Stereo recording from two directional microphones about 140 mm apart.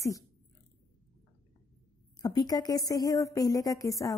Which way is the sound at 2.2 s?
30° left (ahead or behind).